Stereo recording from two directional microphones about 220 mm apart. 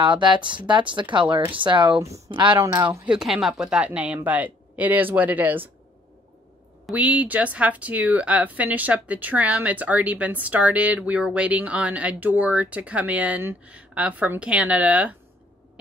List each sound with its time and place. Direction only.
0.0 s a woman's voice: 20° right (ahead or behind)
6.9 s a woman's voice: 5° right (ahead or behind)